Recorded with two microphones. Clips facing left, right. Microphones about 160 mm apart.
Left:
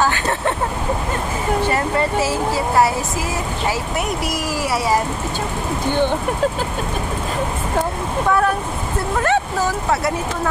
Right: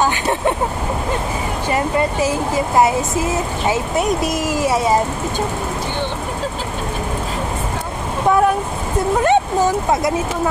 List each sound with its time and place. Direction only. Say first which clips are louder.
0.0 s speech: right 2 dB; 15° right (ahead or behind)
1.7 s speech: right 1 dB; 15° right (ahead or behind)
9.2 s speech: right 3 dB; 20° right (ahead or behind)